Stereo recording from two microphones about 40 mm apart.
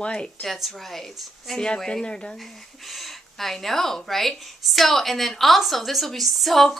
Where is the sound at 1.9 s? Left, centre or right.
Left.